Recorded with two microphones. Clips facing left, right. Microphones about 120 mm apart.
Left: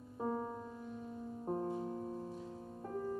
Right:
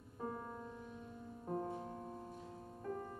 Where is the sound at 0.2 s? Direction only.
25° left (ahead or behind).